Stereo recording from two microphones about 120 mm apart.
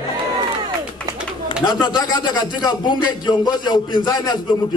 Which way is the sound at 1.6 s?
40° left (ahead or behind).